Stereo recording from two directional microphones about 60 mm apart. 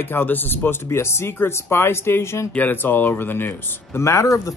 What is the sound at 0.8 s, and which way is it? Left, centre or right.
Speech, left.